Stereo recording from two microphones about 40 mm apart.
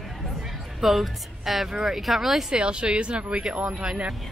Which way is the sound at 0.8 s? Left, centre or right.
Centre.